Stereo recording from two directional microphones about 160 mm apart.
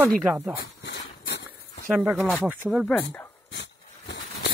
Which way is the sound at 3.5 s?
90° left.